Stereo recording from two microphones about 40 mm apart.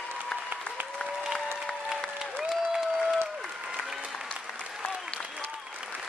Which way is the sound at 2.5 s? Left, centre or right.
Centre.